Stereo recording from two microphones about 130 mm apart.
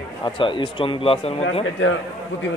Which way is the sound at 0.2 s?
40° left (ahead or behind).